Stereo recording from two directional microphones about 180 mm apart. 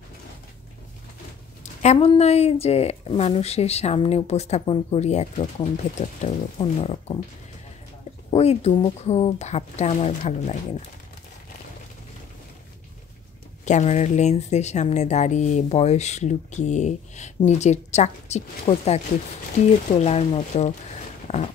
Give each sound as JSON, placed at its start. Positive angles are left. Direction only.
{"t": 1.6, "sound": "speech", "side_deg": 40}
{"t": 8.3, "sound": "speech", "side_deg": 35}
{"t": 13.7, "sound": "speech", "side_deg": 40}
{"t": 21.3, "sound": "a sound", "side_deg": 35}